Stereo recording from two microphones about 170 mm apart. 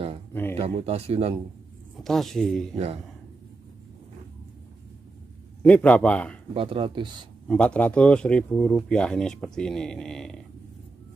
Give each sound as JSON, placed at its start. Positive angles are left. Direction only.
{"t": 0.3, "sound": "speech", "side_deg": 10}
{"t": 0.6, "sound": "speech", "side_deg": -35}
{"t": 2.0, "sound": "speech", "side_deg": 0}
{"t": 5.6, "sound": "a man's voice", "side_deg": 10}
{"t": 6.5, "sound": "speech", "side_deg": -30}
{"t": 7.4, "sound": "speech", "side_deg": 5}